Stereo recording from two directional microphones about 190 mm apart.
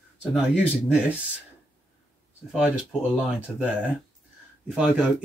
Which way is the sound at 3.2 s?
5° right (ahead or behind).